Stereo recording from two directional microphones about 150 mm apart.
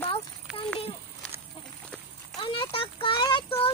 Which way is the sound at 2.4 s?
35° left (ahead or behind).